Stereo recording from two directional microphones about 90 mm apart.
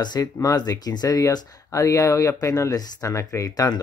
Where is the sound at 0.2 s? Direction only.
40° left (ahead or behind).